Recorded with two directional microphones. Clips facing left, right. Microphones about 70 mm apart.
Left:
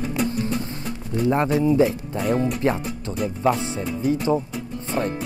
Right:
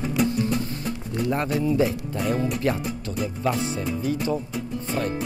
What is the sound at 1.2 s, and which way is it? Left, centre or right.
Speech, left.